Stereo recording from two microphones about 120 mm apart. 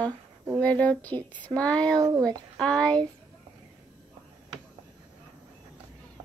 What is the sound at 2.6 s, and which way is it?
Speech, 10° left (ahead or behind).